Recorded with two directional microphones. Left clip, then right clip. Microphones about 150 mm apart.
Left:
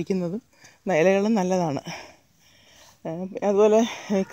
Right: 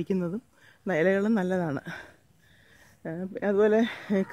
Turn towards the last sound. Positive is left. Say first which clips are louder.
# left 4 dB
turn(degrees=10)  # may be behind; listen again after turning